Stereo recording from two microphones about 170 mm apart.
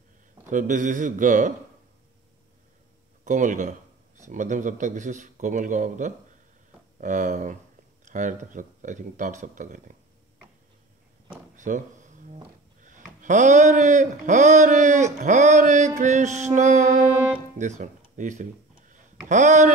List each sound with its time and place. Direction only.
0.5 s speech: 50° right (ahead or behind)
3.3 s speech: 50° right (ahead or behind)
11.5 s a sound: 50° right (ahead or behind)
12.8 s speech: 50° right (ahead or behind)